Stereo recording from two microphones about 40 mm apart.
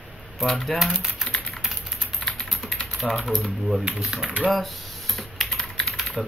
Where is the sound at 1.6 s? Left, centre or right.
Centre.